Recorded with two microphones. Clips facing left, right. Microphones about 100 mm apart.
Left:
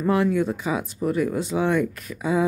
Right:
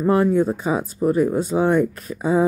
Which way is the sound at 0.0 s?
35° right (ahead or behind).